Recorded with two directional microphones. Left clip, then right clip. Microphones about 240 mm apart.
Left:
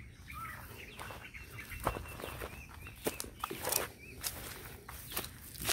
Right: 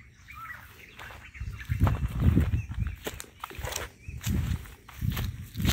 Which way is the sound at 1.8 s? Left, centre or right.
Centre.